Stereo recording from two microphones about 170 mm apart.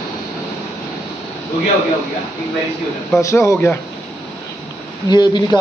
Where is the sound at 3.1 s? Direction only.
15° left (ahead or behind).